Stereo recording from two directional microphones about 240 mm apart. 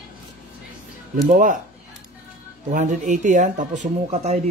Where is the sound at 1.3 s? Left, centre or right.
Right.